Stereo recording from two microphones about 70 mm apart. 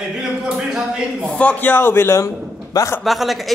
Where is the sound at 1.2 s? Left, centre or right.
Centre.